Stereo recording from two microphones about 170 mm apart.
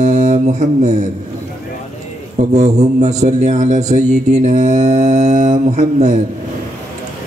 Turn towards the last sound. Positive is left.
turn(degrees=-45)  # may be behind; listen again after turning